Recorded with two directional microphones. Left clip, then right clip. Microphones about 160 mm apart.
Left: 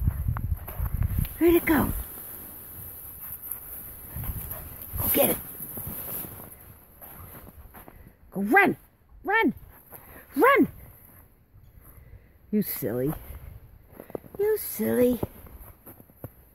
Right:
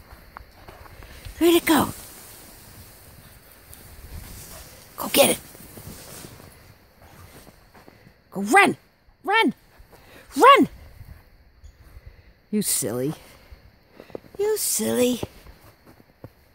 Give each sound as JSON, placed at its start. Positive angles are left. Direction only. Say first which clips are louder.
{"t": 0.3, "sound": "a sound", "louder": "left 3 dB", "side_deg": 80}
{"t": 1.4, "sound": "speech", "louder": "right 3 dB", "side_deg": -30}
{"t": 4.9, "sound": "a sound", "louder": "right 7 dB", "side_deg": -35}
{"t": 8.3, "sound": "speech", "louder": "right 4 dB", "side_deg": -20}
{"t": 12.4, "sound": "speech", "louder": "right 3 dB", "side_deg": -20}
{"t": 14.4, "sound": "speech", "louder": "right 2 dB", "side_deg": -20}
{"t": 16.2, "sound": "clip-clop", "louder": "left 1 dB", "side_deg": 80}